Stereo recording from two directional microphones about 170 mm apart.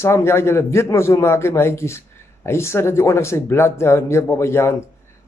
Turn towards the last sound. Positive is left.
turn(degrees=15)  # may be behind; listen again after turning